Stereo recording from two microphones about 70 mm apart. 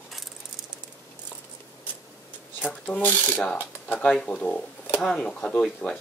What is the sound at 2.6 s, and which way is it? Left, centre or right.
Speech, left.